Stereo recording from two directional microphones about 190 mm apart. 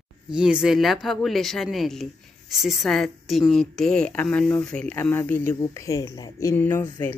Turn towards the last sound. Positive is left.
turn(degrees=15)  # may be behind; listen again after turning